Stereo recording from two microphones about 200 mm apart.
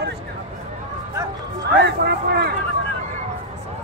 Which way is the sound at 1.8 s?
55° right (ahead or behind).